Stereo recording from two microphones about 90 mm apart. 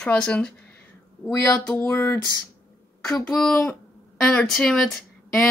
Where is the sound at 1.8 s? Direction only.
20° left (ahead or behind).